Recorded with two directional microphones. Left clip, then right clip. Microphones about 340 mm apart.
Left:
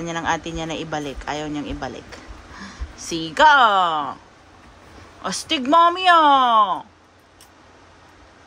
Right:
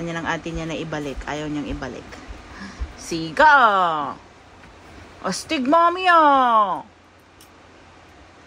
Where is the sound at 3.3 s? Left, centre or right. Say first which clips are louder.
Even; centre.